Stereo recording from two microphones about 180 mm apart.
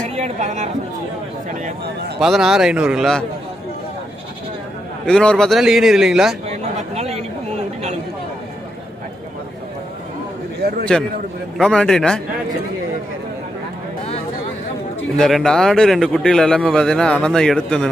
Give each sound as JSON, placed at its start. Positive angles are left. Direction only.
{"t": 0.1, "sound": "speech", "side_deg": -40}
{"t": 2.1, "sound": "a man's voice", "side_deg": 0}
{"t": 5.0, "sound": "a man's voice", "side_deg": 5}
{"t": 6.6, "sound": "a sound", "side_deg": -35}
{"t": 10.6, "sound": "a sound", "side_deg": -60}
{"t": 11.5, "sound": "a man's voice", "side_deg": 5}
{"t": 15.1, "sound": "a man's voice", "side_deg": 0}